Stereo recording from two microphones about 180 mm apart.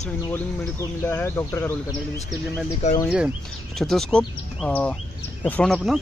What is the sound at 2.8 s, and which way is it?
Speech, 40° left (ahead or behind).